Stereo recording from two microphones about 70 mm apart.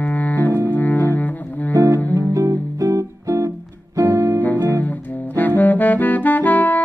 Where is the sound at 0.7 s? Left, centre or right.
Left.